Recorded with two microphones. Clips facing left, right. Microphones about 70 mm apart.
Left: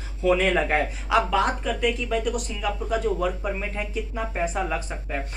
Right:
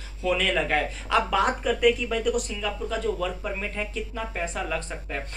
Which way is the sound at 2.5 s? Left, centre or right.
Centre.